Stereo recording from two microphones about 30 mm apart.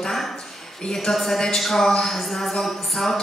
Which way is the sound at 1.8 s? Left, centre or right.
Centre.